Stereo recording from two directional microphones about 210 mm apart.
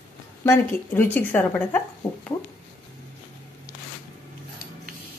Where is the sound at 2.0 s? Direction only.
10° left (ahead or behind).